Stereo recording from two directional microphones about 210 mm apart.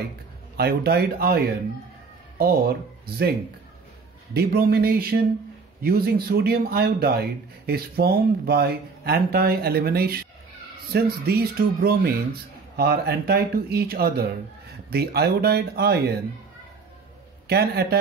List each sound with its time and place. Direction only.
0.6 s a man's voice: 50° right (ahead or behind)
4.3 s a man's voice: 50° right (ahead or behind)
17.5 s a man's voice: 50° right (ahead or behind)